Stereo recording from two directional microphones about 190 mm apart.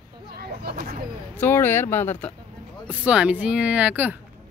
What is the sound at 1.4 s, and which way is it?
Speech, 10° left (ahead or behind).